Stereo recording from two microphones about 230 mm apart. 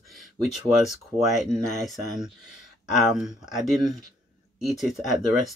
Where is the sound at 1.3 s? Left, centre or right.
Centre.